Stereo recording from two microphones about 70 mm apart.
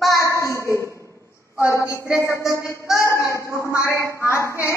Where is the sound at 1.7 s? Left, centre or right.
Left.